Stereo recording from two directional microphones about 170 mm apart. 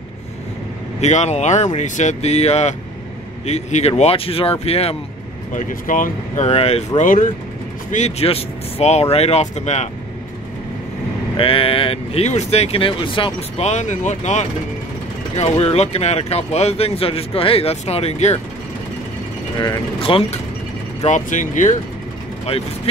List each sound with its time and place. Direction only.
1.0 s speech: 40° left (ahead or behind)
5.5 s speech: 50° left (ahead or behind)
7.0 s speech: 50° left (ahead or behind)
7.9 s speech: 40° left (ahead or behind)
11.3 s speech: 35° left (ahead or behind)
20.0 s speech: 35° left (ahead or behind)
21.0 s speech: 45° left (ahead or behind)